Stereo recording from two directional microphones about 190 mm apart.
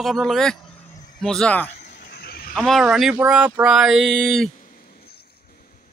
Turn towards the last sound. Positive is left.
turn(degrees=0)  # may be behind; listen again after turning